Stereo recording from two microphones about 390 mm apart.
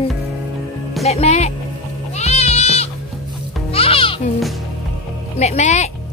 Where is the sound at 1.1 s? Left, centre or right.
Centre.